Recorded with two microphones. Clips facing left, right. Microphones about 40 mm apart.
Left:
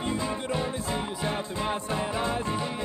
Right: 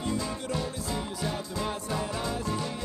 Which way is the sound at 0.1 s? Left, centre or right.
Left.